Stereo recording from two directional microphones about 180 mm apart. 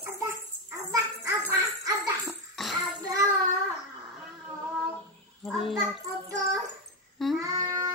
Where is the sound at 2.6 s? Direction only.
Centre (ahead or behind).